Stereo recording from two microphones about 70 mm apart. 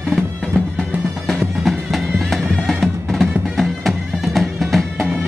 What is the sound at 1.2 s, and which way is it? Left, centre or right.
Music, centre.